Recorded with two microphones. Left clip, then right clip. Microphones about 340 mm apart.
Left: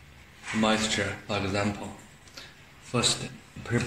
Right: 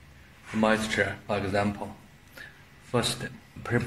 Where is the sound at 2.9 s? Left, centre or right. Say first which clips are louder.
Left 1 dB; right.